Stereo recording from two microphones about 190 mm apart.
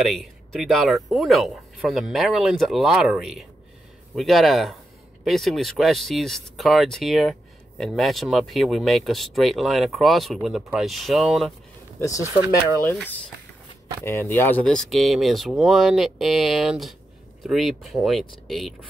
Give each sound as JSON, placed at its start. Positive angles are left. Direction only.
{"t": 0.1, "sound": "speech", "side_deg": 0}
{"t": 12.0, "sound": "speech", "side_deg": 15}